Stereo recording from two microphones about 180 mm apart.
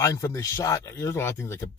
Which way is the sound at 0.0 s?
20° left (ahead or behind).